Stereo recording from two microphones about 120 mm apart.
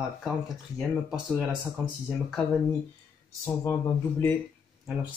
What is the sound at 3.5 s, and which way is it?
Speech, 20° left (ahead or behind).